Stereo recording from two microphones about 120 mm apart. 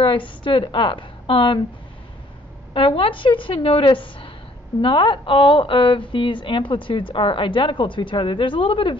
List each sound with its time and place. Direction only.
0.0 s a woman's voice: 45° left (ahead or behind)
2.7 s a woman's voice: 50° left (ahead or behind)